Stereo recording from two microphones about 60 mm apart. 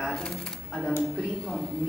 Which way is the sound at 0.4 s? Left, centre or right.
Centre.